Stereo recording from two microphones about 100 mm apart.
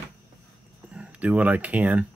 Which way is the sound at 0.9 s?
10° right (ahead or behind).